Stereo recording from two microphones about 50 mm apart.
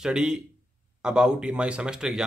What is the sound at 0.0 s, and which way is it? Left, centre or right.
A man's voice, centre.